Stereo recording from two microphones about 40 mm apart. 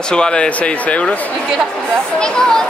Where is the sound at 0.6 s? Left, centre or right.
Left.